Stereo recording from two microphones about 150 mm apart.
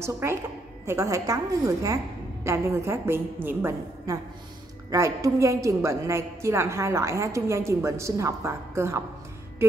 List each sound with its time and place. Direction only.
0.0 s a woman's voice: 15° right (ahead or behind)
9.6 s music: 15° right (ahead or behind)